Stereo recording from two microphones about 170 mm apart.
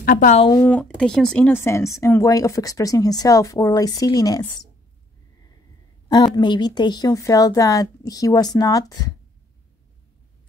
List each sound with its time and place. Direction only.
0.0 s speech: 55° left (ahead or behind)
0.6 s speech: 10° left (ahead or behind)
6.0 s speech: 25° left (ahead or behind)